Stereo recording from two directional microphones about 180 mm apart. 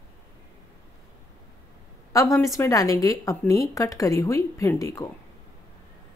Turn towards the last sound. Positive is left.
turn(degrees=15)  # may be behind; listen again after turning